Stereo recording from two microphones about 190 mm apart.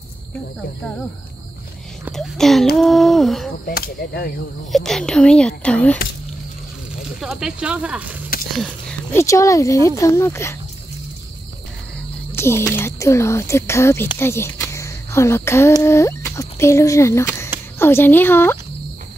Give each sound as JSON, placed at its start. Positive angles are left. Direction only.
{"t": 2.1, "sound": "a child's voice", "side_deg": 0}
{"t": 3.6, "sound": "speech", "side_deg": 55}
{"t": 4.7, "sound": "speech", "side_deg": 0}
{"t": 7.2, "sound": "speech", "side_deg": -5}
{"t": 9.1, "sound": "speech", "side_deg": 15}
{"t": 12.4, "sound": "speech", "side_deg": 15}